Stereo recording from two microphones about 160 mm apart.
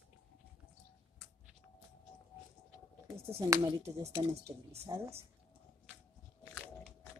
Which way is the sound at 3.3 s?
20° right (ahead or behind).